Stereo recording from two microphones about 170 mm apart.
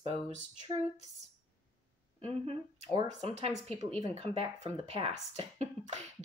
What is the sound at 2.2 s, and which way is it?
Speech, 35° right (ahead or behind).